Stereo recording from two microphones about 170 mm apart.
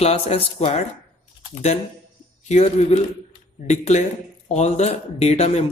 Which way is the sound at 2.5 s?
40° left (ahead or behind).